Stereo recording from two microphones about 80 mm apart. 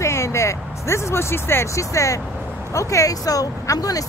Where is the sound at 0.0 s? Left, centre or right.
Left.